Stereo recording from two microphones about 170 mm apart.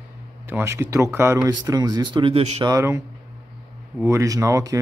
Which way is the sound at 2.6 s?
20° right (ahead or behind).